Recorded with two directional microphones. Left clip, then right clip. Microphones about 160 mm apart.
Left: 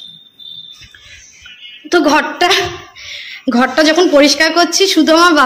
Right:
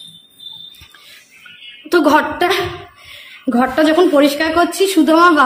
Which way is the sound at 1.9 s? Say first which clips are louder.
Left 1 dB; 5° right (ahead or behind).